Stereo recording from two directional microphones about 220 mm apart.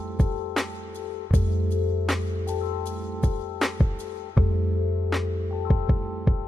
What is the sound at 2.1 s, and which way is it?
Music, centre (ahead or behind).